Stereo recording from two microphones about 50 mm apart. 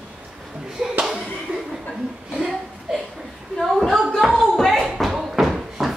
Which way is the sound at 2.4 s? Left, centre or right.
Centre.